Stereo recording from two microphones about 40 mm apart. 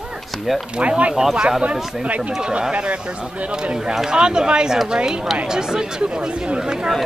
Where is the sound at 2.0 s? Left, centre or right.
Right.